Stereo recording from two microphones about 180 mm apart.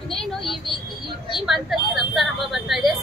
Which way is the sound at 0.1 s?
Centre (ahead or behind).